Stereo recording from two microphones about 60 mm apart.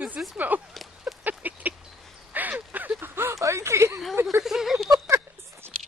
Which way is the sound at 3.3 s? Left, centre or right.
Right.